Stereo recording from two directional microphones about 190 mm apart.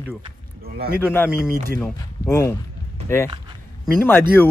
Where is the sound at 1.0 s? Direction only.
10° left (ahead or behind).